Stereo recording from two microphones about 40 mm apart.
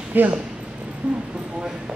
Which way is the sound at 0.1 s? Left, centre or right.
Right.